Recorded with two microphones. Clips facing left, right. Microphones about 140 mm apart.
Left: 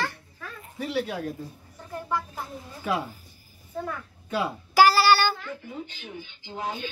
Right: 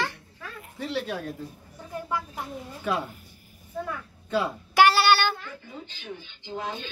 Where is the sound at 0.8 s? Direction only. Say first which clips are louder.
Left 2 dB; 5° left (ahead or behind).